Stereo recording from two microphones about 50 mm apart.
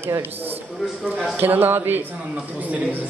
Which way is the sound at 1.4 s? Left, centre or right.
Right.